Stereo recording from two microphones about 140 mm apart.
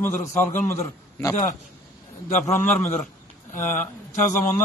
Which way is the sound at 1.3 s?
65° left (ahead or behind).